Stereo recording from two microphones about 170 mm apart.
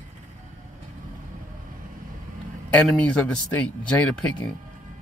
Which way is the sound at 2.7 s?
5° left (ahead or behind).